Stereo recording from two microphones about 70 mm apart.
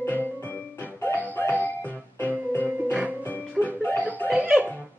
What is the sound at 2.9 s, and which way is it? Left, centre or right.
Music, right.